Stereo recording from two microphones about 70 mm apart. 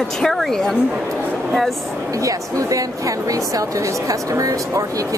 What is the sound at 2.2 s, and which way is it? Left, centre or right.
Speech, right.